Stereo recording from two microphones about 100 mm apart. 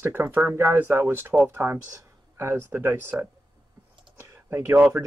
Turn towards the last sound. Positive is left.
turn(degrees=-15)  # may be behind; listen again after turning